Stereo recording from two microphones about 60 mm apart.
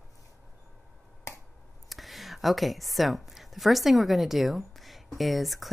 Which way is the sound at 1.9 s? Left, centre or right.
Centre.